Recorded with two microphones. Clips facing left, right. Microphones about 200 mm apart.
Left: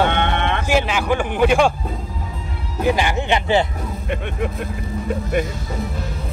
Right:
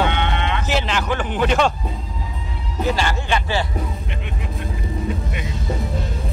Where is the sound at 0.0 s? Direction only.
55° left (ahead or behind).